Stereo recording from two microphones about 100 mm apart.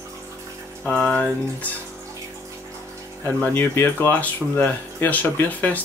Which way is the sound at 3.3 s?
25° left (ahead or behind).